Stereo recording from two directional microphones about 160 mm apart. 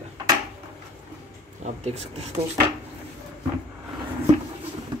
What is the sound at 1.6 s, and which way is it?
Speech, 45° right (ahead or behind).